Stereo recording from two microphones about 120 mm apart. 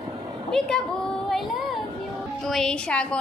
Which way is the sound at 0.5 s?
5° left (ahead or behind).